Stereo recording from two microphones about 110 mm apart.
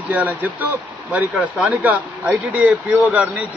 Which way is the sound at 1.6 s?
15° right (ahead or behind).